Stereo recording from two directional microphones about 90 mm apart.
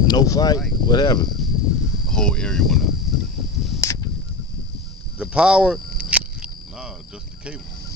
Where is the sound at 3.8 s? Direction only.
35° left (ahead or behind).